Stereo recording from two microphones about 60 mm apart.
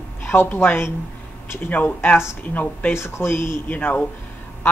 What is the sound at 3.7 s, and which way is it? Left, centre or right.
Speech, left.